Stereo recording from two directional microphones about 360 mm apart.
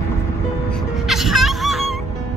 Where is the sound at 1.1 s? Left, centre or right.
Centre.